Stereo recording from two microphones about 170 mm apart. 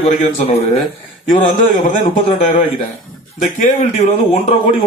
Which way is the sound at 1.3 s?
50° left (ahead or behind).